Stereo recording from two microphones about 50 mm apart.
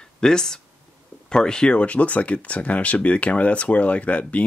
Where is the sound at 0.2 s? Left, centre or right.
Centre.